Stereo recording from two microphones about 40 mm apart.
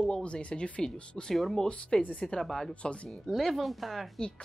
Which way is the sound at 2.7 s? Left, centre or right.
Left.